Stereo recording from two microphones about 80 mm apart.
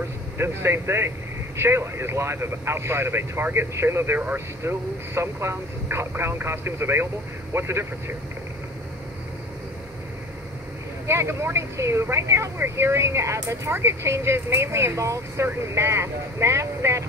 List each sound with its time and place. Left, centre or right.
0.4 s speech: right
11.1 s speech: right